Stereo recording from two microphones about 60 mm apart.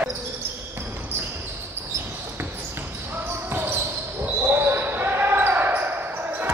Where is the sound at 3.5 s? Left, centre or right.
Right.